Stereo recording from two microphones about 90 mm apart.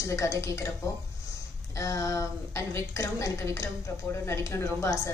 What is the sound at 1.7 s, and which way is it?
A woman's voice, 35° left (ahead or behind).